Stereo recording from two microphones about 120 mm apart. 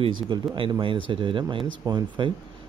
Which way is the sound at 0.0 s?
45° right (ahead or behind).